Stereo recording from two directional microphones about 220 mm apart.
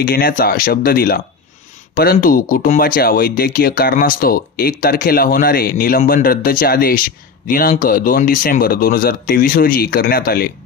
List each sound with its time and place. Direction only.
0.0 s speech: 45° left (ahead or behind)